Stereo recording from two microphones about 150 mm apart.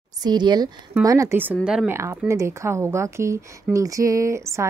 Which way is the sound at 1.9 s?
20° right (ahead or behind).